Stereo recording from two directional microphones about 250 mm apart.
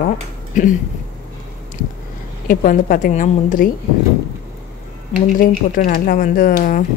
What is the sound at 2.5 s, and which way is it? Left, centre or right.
Speech, left.